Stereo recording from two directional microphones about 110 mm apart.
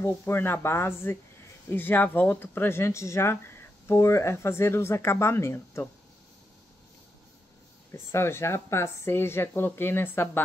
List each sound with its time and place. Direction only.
0.2 s speech: 20° left (ahead or behind)
7.9 s speech: 25° left (ahead or behind)